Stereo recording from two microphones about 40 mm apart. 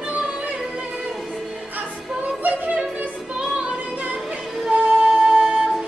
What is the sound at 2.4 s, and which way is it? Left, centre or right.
Music, right.